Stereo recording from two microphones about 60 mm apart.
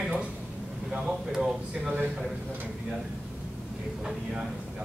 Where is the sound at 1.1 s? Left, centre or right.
Centre.